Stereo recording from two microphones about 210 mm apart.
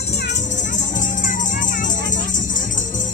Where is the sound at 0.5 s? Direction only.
35° left (ahead or behind).